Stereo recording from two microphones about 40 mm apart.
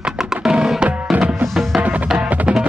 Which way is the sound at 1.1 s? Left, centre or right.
Right.